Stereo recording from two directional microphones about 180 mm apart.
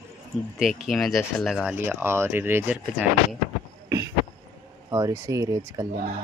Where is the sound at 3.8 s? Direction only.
20° right (ahead or behind).